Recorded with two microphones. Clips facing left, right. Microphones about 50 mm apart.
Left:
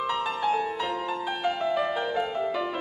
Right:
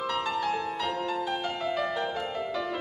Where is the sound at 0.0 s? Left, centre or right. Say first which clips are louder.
Left 2 dB; centre.